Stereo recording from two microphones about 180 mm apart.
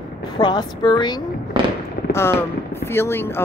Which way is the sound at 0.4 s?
25° left (ahead or behind).